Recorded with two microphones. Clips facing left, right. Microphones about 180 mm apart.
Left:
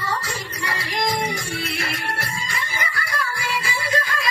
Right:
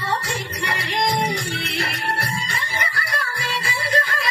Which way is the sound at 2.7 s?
30° right (ahead or behind).